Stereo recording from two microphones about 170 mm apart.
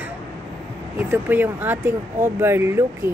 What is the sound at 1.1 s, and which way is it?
Speech, 10° right (ahead or behind).